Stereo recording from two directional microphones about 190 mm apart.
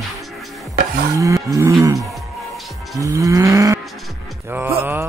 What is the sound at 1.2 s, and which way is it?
Cattle, 15° right (ahead or behind).